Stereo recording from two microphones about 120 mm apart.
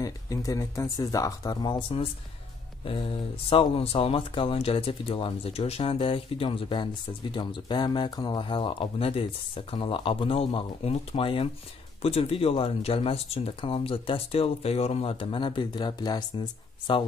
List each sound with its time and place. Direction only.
0.0 s speech: 30° left (ahead or behind)